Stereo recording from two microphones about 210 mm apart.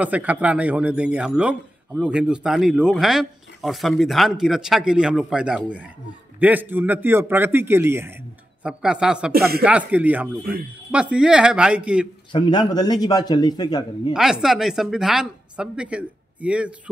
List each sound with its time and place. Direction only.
0.0 s a man's voice: 5° right (ahead or behind)
12.3 s a man's voice: 25° left (ahead or behind)
14.1 s a man's voice: centre (ahead or behind)